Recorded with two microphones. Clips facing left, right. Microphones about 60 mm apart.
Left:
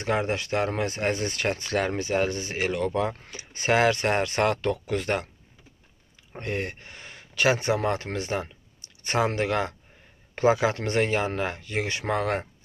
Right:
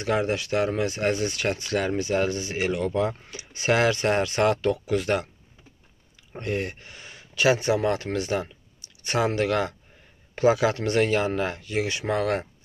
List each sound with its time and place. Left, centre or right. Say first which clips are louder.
0.0 s speech: right 1 dB; left
6.3 s speech: right 2 dB; left